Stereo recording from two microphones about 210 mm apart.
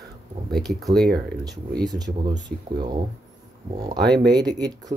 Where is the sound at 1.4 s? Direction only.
20° right (ahead or behind).